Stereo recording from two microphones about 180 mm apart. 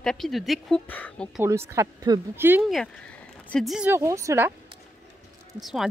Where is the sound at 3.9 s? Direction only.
15° right (ahead or behind).